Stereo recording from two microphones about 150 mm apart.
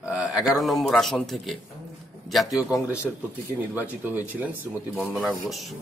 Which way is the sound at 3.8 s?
10° right (ahead or behind).